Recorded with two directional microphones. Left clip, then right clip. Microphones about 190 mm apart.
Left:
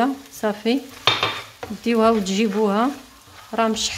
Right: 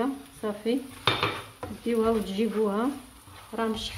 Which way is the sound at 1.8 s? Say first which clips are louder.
Left 8 dB; 55° left (ahead or behind).